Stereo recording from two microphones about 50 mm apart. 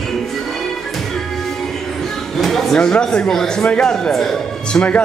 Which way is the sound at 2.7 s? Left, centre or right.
Centre.